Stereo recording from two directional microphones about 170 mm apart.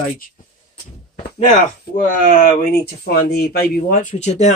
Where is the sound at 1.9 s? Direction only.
60° left (ahead or behind).